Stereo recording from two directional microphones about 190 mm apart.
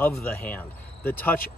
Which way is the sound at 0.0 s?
10° left (ahead or behind).